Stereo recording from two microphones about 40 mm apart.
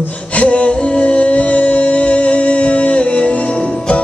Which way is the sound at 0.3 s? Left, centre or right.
Left.